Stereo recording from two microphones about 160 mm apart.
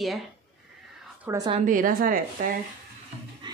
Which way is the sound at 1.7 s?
60° right (ahead or behind).